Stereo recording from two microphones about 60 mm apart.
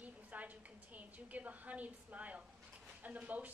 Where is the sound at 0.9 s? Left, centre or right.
Right.